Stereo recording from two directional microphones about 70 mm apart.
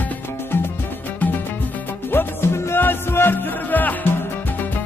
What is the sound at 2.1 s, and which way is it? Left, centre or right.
Music, left.